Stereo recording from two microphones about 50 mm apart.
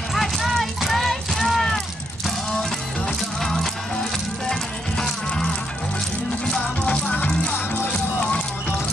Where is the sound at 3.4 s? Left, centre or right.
Centre; by 8.4 s left.